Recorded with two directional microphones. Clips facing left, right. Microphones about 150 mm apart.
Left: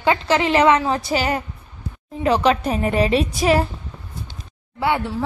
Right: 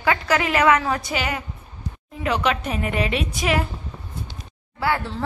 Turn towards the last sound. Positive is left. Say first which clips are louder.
# left 3 dB
turn(degrees=15)  # may be behind; listen again after turning